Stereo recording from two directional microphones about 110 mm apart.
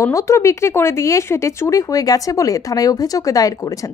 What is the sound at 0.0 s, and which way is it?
Speech, 30° left (ahead or behind).